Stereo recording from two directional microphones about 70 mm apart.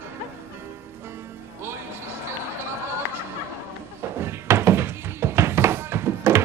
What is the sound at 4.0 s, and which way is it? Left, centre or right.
Thunk, right.